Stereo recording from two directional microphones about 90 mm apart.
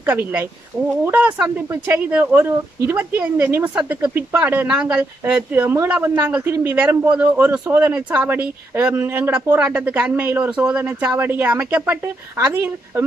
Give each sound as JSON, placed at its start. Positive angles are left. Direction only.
{"t": 0.0, "sound": "speech", "side_deg": -20}